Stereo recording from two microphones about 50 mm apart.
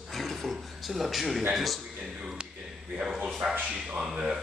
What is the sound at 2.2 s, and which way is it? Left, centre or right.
Speech, centre.